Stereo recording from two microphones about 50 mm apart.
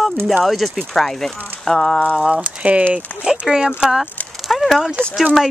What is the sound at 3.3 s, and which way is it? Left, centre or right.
Speech, centre.